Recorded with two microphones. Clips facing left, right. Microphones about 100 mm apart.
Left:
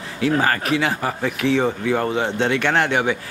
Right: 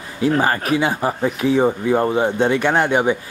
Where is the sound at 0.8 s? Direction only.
20° right (ahead or behind).